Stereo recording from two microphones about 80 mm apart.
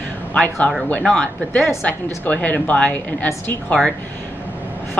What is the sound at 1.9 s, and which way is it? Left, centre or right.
A woman's voice, left.